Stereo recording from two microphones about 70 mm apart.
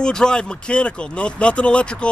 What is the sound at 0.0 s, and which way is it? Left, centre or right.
Speech, centre.